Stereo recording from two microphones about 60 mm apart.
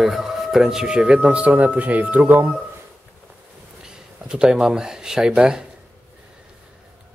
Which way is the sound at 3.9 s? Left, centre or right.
Centre.